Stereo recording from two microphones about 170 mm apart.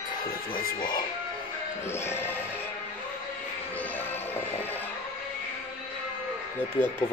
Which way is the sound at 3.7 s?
10° left (ahead or behind).